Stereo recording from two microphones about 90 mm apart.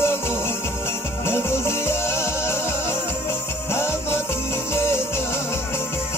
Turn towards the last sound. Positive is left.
turn(degrees=30)  # may be behind; listen again after turning